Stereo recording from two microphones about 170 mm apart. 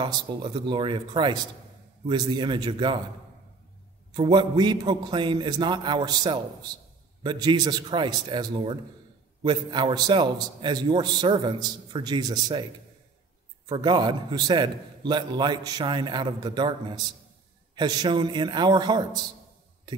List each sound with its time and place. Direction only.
0.0 s a man's voice: 25° right (ahead or behind)
4.1 s a man's voice: 25° right (ahead or behind)
13.7 s a man's voice: 25° right (ahead or behind)